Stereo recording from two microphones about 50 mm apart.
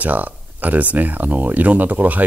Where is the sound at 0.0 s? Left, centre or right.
Right.